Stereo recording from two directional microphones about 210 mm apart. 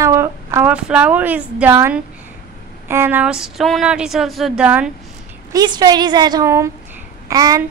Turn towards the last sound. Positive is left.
turn(degrees=-15)  # may be behind; listen again after turning